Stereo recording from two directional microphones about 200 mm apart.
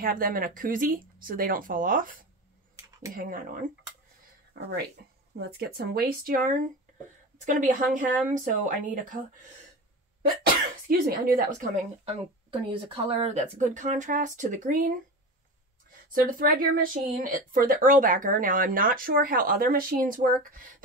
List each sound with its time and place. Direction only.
0.0 s speech: 45° right (ahead or behind)
4.6 s speech: 60° right (ahead or behind); by 9.2 s 40° right (ahead or behind)
10.9 s speech: 45° right (ahead or behind)
12.0 s speech: 30° right (ahead or behind)
16.1 s speech: 45° right (ahead or behind)